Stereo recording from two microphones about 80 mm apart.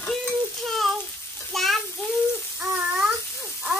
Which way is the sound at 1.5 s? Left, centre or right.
Centre.